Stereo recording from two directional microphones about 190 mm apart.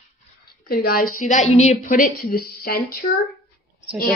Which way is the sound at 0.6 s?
50° left (ahead or behind).